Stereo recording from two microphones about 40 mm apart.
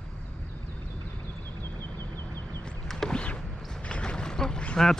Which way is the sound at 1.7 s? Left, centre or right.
Left.